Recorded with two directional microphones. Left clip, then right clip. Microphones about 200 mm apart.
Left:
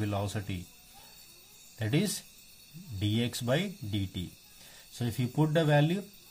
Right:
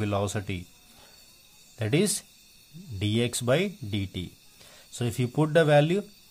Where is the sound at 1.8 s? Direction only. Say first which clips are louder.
Right 6 dB; 35° right (ahead or behind).